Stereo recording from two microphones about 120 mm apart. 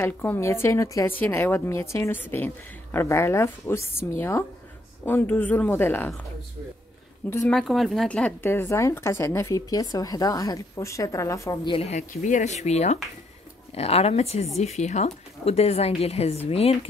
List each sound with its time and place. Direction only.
0.0 s speech: 20° left (ahead or behind)
7.4 s speech: centre (ahead or behind); by 11.5 s 25° left (ahead or behind)
11.6 s speech: 50° left (ahead or behind)
11.9 s speech: 85° left; by 13.0 s 70° left (ahead or behind)
13.7 s a woman's voice: 55° left (ahead or behind)